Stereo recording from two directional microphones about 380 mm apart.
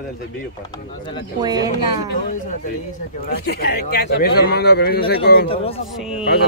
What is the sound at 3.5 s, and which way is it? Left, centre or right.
Speech, left.